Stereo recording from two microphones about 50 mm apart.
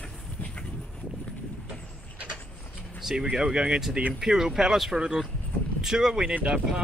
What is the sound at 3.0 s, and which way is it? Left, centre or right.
Speech, centre.